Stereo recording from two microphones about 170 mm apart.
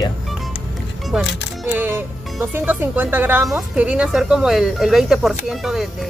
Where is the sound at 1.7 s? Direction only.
15° right (ahead or behind).